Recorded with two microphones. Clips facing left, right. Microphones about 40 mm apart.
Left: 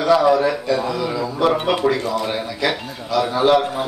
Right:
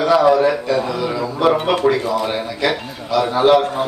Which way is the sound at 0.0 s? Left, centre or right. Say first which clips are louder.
Right 2 dB; centre.